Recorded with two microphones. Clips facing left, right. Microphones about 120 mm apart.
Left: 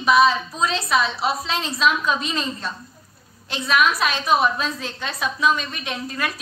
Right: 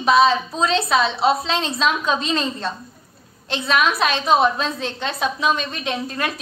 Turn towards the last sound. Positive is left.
turn(degrees=-25)  # may be behind; listen again after turning